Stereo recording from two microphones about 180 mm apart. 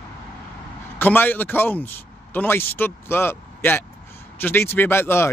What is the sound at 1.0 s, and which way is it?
Speech, 10° left (ahead or behind).